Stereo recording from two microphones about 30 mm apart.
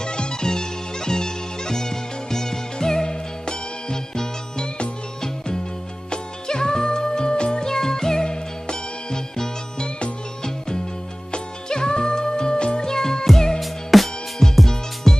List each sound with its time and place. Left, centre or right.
0.0 s music: left
6.0 s music: left
7.6 s music: centre
11.3 s music: left
13.6 s music: centre
14.4 s music: centre